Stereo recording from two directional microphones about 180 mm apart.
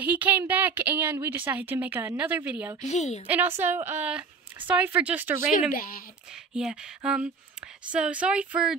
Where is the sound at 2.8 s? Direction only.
40° left (ahead or behind).